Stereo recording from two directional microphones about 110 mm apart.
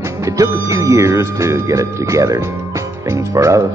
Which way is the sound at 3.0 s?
25° right (ahead or behind).